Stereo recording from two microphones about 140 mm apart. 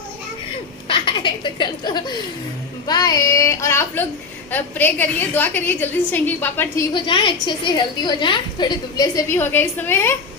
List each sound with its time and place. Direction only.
0.8 s a woman's voice: 35° left (ahead or behind)
2.9 s child singing: 25° left (ahead or behind)
4.5 s a woman's voice: 15° left (ahead or behind)
6.9 s a woman's voice: 35° left (ahead or behind)
9.3 s a woman's voice: 15° left (ahead or behind)